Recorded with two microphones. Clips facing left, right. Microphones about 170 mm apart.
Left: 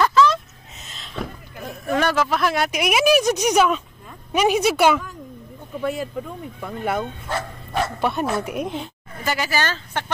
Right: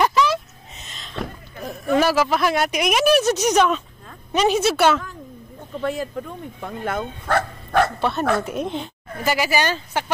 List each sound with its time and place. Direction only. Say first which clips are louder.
0.0 s a sound: left 2 dB; 15° right (ahead or behind)
0.8 s a sound: even; 5° left (ahead or behind)
4.3 s a woman's voice: even; 10° left (ahead or behind)
7.2 s bow-wow: right 6 dB; 65° right (ahead or behind)
8.0 s a woman's voice: right 1 dB; 15° left (ahead or behind)
9.2 s speech: right 3 dB; 10° right (ahead or behind)